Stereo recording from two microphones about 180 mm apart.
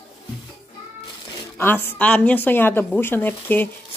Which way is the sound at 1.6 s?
10° left (ahead or behind).